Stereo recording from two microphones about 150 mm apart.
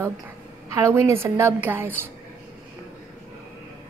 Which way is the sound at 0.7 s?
20° right (ahead or behind).